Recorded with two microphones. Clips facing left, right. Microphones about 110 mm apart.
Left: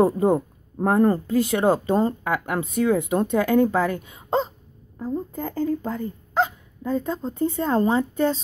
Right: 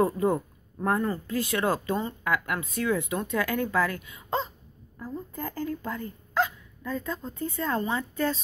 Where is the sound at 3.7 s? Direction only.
25° left (ahead or behind).